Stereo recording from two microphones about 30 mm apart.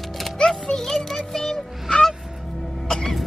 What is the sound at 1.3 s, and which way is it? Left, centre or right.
Speech, centre.